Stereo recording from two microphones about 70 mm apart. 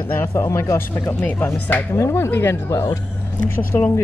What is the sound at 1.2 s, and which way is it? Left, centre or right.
Speech, left.